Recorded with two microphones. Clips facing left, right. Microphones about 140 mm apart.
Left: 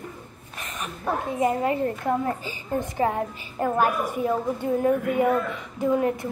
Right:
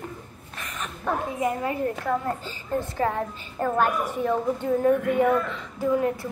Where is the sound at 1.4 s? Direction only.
30° left (ahead or behind).